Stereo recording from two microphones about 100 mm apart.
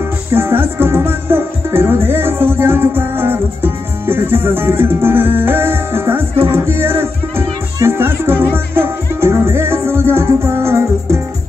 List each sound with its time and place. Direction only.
0.3 s music: 25° right (ahead or behind)